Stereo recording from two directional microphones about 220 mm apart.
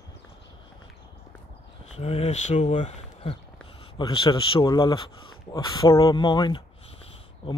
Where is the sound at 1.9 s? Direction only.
25° left (ahead or behind).